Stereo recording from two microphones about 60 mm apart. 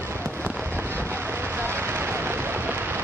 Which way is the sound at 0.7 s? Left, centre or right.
Right.